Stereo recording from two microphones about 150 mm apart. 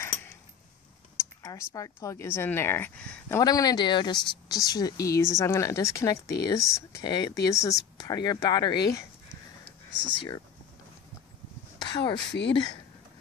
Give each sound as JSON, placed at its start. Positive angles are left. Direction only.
{"t": 1.1, "sound": "speech", "side_deg": 20}
{"t": 3.3, "sound": "speech", "side_deg": 25}
{"t": 11.8, "sound": "speech", "side_deg": 30}